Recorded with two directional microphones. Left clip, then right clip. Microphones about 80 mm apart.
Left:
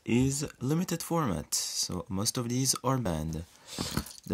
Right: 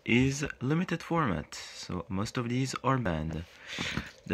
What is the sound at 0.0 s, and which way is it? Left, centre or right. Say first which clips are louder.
Speech: right 2 dB; left.